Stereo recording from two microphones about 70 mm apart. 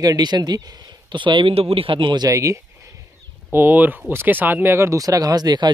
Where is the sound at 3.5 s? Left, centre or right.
Right.